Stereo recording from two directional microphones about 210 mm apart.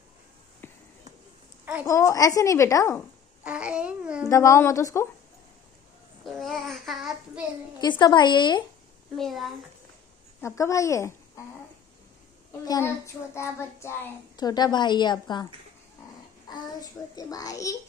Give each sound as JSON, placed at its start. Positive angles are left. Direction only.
{"t": 0.6, "sound": "basketball bounce", "side_deg": 10}
{"t": 1.9, "sound": "a child's voice", "side_deg": 15}
{"t": 3.4, "sound": "child singing", "side_deg": -5}
{"t": 4.3, "sound": "a child's voice", "side_deg": 15}
{"t": 6.2, "sound": "child singing", "side_deg": 0}
{"t": 7.8, "sound": "a child's voice", "side_deg": 20}
{"t": 9.1, "sound": "child singing", "side_deg": 0}
{"t": 10.4, "sound": "speech", "side_deg": 15}
{"t": 12.6, "sound": "a child's voice", "side_deg": 15}
{"t": 16.4, "sound": "a child's voice", "side_deg": 20}